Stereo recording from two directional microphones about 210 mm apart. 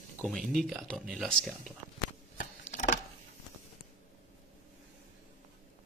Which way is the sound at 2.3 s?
40° left (ahead or behind).